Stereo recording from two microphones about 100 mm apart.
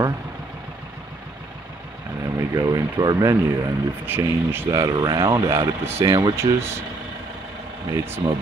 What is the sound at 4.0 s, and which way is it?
Speech, 20° right (ahead or behind).